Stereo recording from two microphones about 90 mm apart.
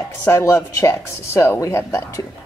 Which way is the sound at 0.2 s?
30° left (ahead or behind).